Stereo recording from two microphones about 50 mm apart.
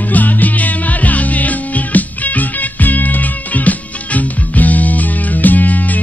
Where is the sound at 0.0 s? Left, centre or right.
Left.